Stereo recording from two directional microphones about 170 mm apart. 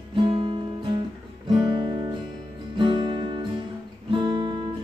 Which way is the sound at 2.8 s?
25° right (ahead or behind).